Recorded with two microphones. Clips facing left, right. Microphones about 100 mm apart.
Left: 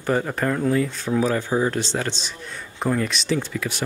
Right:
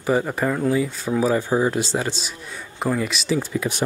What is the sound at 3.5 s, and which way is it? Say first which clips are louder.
Speech: right 4 dB; 20° right (ahead or behind).